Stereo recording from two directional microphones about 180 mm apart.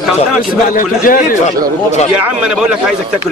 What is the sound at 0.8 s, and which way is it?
Speech, 45° left (ahead or behind).